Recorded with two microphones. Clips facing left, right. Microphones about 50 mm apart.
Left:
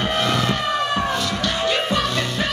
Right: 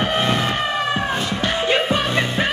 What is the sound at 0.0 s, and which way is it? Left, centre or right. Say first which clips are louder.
Music: right 1 dB; right.